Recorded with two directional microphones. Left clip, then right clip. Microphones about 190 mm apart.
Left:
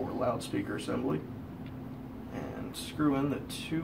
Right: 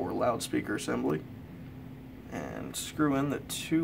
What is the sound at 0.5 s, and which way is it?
Speech, 20° right (ahead or behind).